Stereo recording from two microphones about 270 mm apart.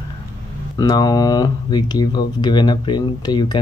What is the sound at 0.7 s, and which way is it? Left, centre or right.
Speech, centre.